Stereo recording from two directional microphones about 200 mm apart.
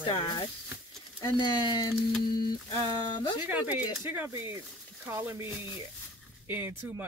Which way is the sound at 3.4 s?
10° right (ahead or behind).